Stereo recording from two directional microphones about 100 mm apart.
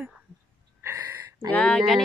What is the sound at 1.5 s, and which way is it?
Speech, 15° left (ahead or behind).